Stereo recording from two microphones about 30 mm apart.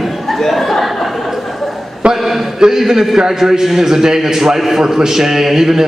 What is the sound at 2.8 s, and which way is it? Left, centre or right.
A man's voice, centre.